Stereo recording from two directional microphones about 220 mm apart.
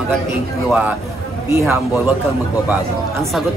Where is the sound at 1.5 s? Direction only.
10° right (ahead or behind).